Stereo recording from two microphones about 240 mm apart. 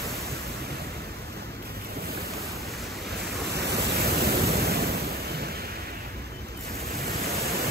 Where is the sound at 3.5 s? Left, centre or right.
Right.